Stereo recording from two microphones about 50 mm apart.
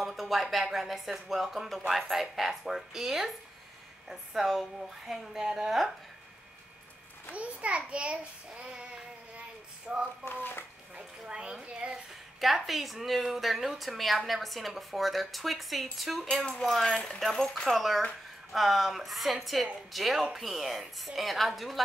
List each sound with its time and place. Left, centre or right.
0.0 s a woman's voice: centre
7.3 s child singing: right
10.3 s speech: left
11.0 s a woman's voice: centre
12.4 s speech: centre